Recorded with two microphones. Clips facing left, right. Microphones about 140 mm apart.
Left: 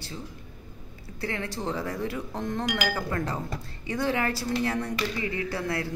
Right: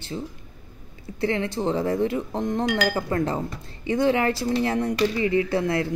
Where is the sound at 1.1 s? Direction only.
25° right (ahead or behind).